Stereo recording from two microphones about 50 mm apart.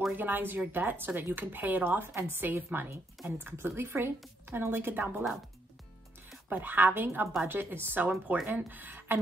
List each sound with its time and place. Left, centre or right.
0.1 s speech: right
6.5 s speech: right